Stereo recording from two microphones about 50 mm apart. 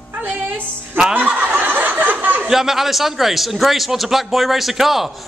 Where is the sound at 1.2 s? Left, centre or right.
Right.